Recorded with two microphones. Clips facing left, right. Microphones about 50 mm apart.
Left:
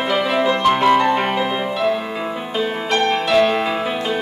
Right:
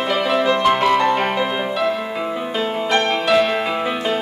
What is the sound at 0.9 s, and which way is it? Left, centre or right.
Music, centre.